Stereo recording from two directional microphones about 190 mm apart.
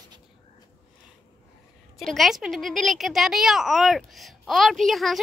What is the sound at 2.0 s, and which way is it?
Speech, centre (ahead or behind).